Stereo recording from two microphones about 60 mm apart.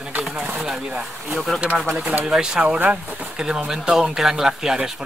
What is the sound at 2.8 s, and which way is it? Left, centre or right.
Speech, right.